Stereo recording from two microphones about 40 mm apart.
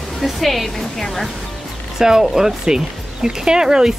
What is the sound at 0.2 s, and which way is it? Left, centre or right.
Speech, centre.